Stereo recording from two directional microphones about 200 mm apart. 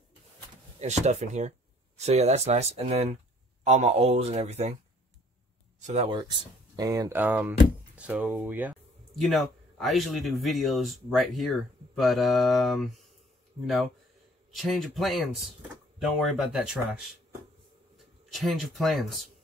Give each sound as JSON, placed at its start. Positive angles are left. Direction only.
{"t": 0.7, "sound": "speech", "side_deg": -35}
{"t": 5.8, "sound": "speech", "side_deg": -35}
{"t": 6.0, "sound": "speech", "side_deg": -20}
{"t": 14.5, "sound": "speech", "side_deg": 0}
{"t": 17.9, "sound": "speech", "side_deg": 0}